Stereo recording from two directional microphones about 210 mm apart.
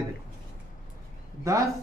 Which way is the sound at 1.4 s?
15° right (ahead or behind).